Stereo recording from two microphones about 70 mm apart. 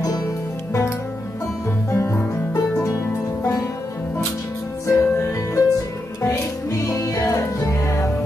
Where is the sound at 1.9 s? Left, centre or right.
Left.